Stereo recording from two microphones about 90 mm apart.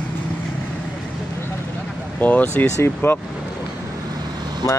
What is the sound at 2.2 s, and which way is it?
Speech, 20° left (ahead or behind).